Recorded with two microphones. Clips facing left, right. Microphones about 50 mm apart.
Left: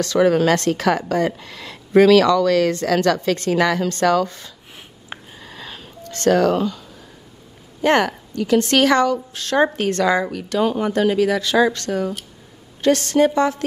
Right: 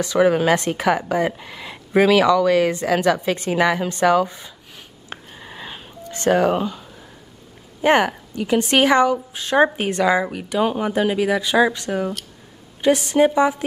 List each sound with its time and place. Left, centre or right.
0.0 s a woman's voice: centre
5.4 s a sound: centre
7.8 s a woman's voice: centre